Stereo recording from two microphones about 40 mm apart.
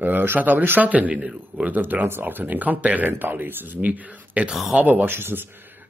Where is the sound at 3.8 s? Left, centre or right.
Right.